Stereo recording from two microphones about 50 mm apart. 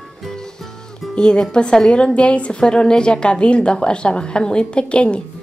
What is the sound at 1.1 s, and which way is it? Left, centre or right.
A woman's voice, centre.